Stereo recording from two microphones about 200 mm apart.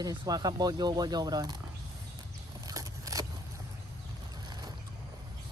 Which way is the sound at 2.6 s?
15° right (ahead or behind).